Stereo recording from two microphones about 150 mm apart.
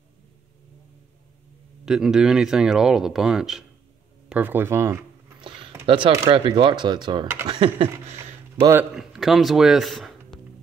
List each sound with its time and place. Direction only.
1.9 s speech: 5° right (ahead or behind)
5.4 s a sound: 30° right (ahead or behind)
5.9 s speech: 35° right (ahead or behind)
8.9 s speech: centre (ahead or behind)